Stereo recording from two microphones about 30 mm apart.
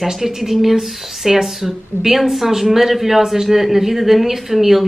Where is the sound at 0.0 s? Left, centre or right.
Centre.